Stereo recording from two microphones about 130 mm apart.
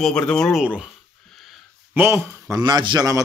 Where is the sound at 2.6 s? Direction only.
35° right (ahead or behind).